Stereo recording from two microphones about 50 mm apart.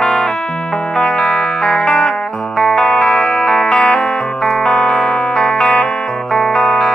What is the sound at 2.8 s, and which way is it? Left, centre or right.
Music, centre.